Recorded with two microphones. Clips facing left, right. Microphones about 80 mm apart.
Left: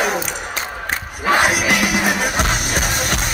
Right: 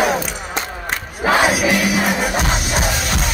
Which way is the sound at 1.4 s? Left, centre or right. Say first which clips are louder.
Right 1 dB; left.